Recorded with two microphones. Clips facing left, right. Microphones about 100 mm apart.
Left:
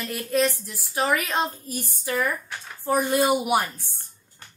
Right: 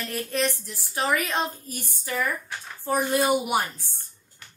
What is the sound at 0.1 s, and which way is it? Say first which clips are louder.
A woman's voice: left 4 dB; 15° left (ahead or behind).